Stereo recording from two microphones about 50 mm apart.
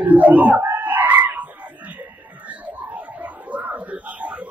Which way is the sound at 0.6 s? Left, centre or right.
Right.